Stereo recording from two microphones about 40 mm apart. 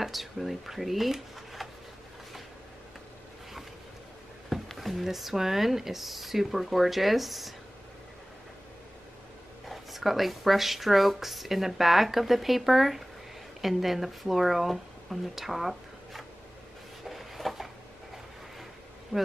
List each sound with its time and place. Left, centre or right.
0.0 s speech: centre
4.7 s speech: centre
9.7 s speech: centre
17.1 s a sound: centre
19.1 s speech: left